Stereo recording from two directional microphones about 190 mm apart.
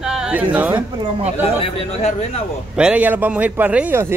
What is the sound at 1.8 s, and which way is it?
Speech, 30° left (ahead or behind).